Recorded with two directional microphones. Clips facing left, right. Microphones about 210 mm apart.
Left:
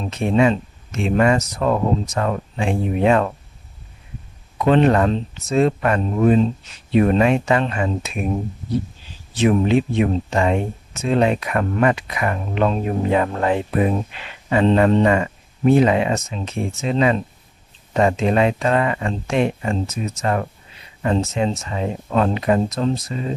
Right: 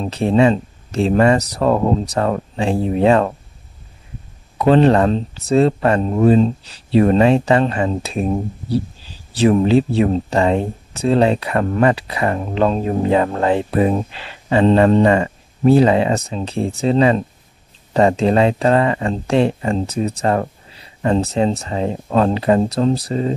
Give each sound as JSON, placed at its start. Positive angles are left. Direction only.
{"t": 0.0, "sound": "speech", "side_deg": -35}
{"t": 4.6, "sound": "speech", "side_deg": -35}
{"t": 9.3, "sound": "speech", "side_deg": -35}